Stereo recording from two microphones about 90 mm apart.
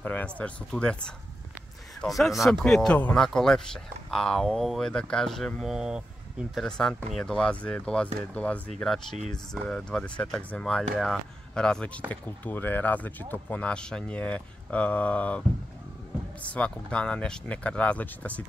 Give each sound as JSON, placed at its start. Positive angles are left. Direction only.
{"t": 0.0, "sound": "speech", "side_deg": 15}
{"t": 2.9, "sound": "speech", "side_deg": 15}
{"t": 3.2, "sound": "speech", "side_deg": 5}
{"t": 6.5, "sound": "speech", "side_deg": 5}
{"t": 12.1, "sound": "speech", "side_deg": 20}
{"t": 16.4, "sound": "speech", "side_deg": 15}